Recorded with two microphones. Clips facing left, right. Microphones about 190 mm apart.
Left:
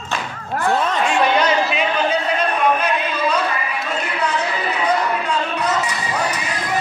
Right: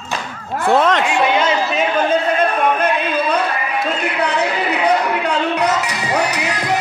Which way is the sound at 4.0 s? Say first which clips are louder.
Right 1 dB; 65° right (ahead or behind).